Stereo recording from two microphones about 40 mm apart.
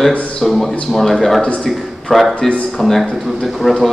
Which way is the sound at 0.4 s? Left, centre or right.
Centre.